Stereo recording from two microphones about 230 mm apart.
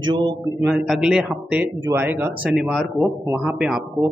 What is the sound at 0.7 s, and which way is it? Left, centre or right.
Speech, centre.